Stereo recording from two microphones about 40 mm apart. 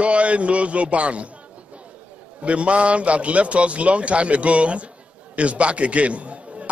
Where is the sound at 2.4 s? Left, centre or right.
Right.